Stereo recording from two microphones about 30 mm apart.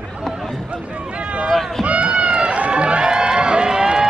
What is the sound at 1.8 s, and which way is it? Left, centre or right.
Run, right.